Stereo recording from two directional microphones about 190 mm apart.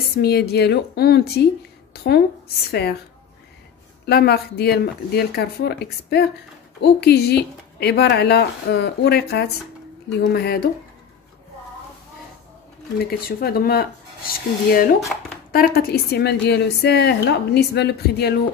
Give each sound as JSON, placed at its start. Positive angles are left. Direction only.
{"t": 0.1, "sound": "a woman's voice", "side_deg": 55}
{"t": 4.0, "sound": "a woman's voice", "side_deg": 60}
{"t": 13.4, "sound": "a woman's voice", "side_deg": 55}